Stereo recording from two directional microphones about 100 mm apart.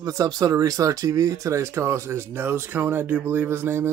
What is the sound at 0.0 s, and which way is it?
Speech, 40° right (ahead or behind).